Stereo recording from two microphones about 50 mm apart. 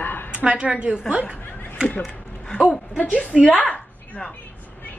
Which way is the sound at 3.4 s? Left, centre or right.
Left.